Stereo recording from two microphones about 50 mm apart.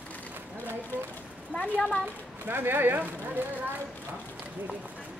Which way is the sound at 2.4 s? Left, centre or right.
Right.